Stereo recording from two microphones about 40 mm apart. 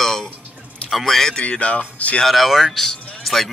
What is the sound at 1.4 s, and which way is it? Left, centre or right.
Speech, left.